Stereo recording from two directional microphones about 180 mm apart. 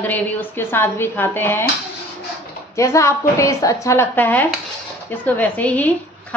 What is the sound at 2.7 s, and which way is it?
A woman's voice, 15° left (ahead or behind).